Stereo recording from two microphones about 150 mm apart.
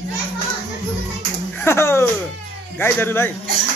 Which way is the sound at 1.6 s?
15° left (ahead or behind).